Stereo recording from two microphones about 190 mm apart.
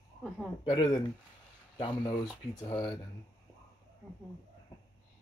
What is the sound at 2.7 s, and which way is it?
Speech, 25° left (ahead or behind).